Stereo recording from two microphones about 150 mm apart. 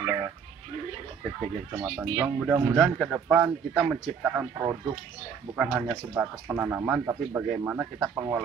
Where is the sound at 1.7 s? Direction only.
15° right (ahead or behind); by 4.3 s centre (ahead or behind).